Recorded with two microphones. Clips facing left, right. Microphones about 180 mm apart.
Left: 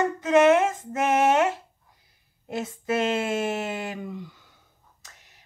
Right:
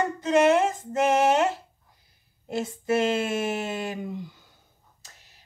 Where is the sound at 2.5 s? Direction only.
30° right (ahead or behind).